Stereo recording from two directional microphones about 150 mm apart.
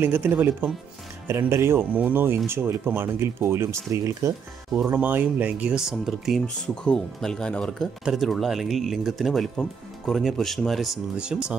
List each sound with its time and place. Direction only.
0.0 s speech: 15° right (ahead or behind)